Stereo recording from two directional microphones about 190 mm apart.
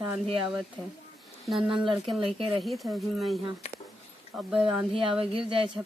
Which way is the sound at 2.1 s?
25° right (ahead or behind).